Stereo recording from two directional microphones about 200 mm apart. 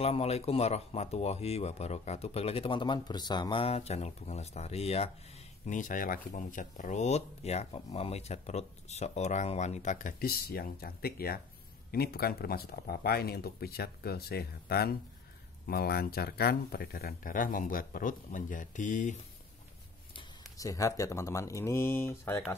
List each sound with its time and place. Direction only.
0.0 s speech: 30° left (ahead or behind)
20.2 s speech: 15° left (ahead or behind)